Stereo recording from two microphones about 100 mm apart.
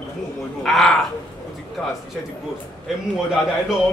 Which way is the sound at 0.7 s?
Centre (ahead or behind).